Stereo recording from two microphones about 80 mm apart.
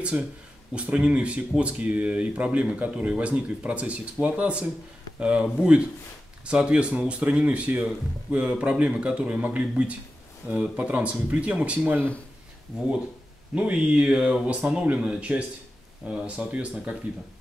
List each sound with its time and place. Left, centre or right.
0.0 s speech: centre
13.6 s speech: centre